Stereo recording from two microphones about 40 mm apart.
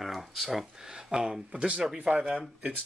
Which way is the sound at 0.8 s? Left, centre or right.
Centre.